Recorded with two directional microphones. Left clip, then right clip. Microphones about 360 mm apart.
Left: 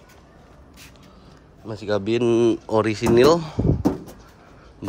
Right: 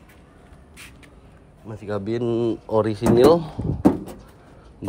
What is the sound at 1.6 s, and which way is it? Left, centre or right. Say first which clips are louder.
Speech: left 5 dB; centre.